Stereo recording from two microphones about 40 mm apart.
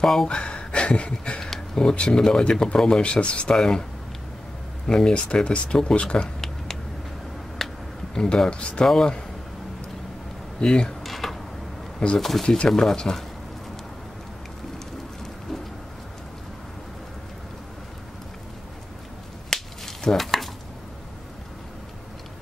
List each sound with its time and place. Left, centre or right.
0.0 s a man's voice: centre
0.3 s a sound: left
1.4 s speech: centre
3.0 s speech: left
3.5 s a man's voice: centre
4.8 s speech: centre
7.6 s a sound: centre
8.1 s speech: centre
8.8 s a man's voice: centre
10.6 s speech: left
11.1 s a sound: centre
12.2 s a man's voice: centre
19.5 s finger snapping: centre